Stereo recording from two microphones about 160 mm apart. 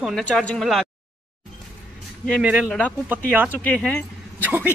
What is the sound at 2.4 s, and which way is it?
Speech, 5° right (ahead or behind).